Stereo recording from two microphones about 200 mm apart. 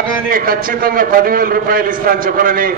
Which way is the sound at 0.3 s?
45° right (ahead or behind).